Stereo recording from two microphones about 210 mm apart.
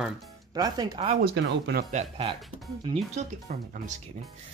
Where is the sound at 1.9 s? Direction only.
30° right (ahead or behind).